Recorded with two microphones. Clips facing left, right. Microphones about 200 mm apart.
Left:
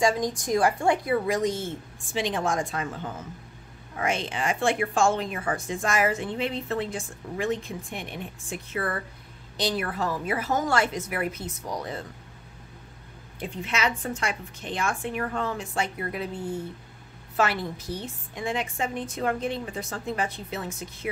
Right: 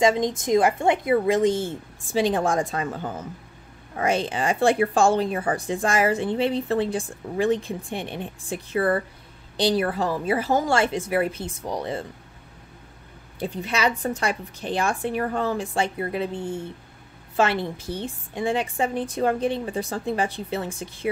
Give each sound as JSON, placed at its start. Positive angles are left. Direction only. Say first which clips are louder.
{"t": 0.0, "sound": "a woman's voice", "louder": "right 4 dB", "side_deg": -20}
{"t": 13.4, "sound": "speech", "louder": "right 4 dB", "side_deg": -35}